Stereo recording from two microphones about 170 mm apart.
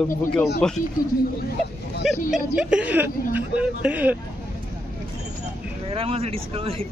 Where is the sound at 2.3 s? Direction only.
5° right (ahead or behind).